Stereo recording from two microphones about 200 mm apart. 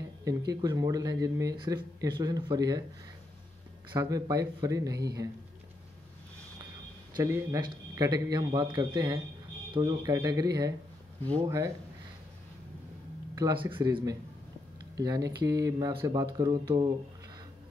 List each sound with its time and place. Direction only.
0.2 s speech: 15° right (ahead or behind)
4.0 s speech: 15° right (ahead or behind)
7.2 s a man's voice: 15° right (ahead or behind)
13.3 s a man's voice: 20° right (ahead or behind)